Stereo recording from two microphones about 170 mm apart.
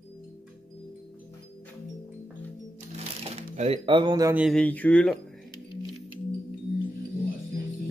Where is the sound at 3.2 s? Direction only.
35° right (ahead or behind); by 4.4 s 20° right (ahead or behind).